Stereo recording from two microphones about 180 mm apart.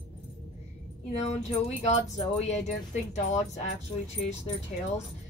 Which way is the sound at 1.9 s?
40° left (ahead or behind).